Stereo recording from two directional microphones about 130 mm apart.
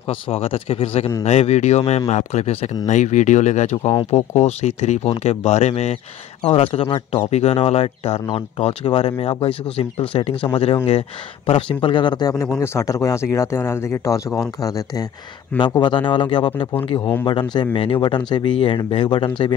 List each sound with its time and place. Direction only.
0.1 s speech: 50° left (ahead or behind)
12.4 s speech: 20° left (ahead or behind); by 19.5 s 40° left (ahead or behind)